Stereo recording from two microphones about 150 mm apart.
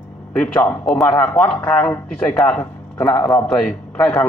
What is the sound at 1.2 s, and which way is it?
A man's voice, 10° left (ahead or behind).